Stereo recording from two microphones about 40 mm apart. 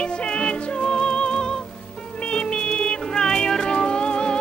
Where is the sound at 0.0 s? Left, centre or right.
Left.